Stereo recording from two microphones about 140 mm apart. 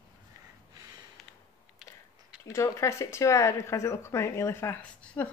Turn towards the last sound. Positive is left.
turn(degrees=10)  # may be behind; listen again after turning